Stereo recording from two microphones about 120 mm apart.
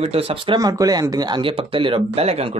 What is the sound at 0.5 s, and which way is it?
Speech, 30° right (ahead or behind).